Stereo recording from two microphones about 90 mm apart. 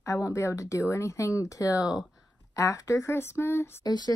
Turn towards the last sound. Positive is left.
turn(degrees=50)  # may be behind; listen again after turning